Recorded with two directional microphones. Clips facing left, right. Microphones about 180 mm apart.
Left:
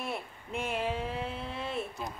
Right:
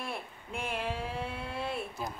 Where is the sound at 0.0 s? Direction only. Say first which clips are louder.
Left 2 dB; 5° left (ahead or behind).